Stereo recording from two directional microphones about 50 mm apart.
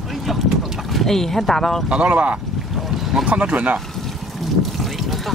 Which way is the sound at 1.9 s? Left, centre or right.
Right.